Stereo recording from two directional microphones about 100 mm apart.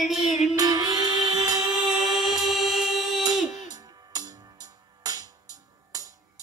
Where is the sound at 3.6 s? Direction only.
40° right (ahead or behind).